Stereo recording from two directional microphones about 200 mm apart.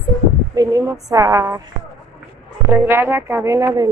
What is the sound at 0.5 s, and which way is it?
A woman's voice, 15° right (ahead or behind).